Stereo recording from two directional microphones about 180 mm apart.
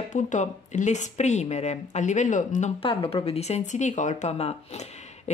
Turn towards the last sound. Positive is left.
turn(degrees=35)  # may be behind; listen again after turning